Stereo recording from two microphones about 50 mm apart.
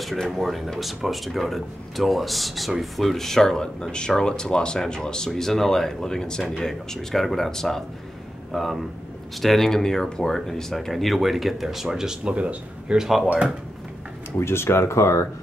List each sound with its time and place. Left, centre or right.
0.0 s speech: centre
12.3 s speech: right
12.9 s speech: centre
14.3 s speech: left